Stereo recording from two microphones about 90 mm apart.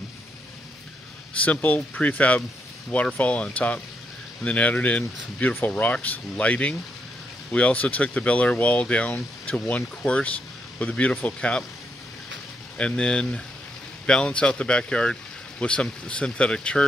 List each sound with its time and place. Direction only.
1.4 s speech: 20° left (ahead or behind)
12.7 s speech: 10° left (ahead or behind)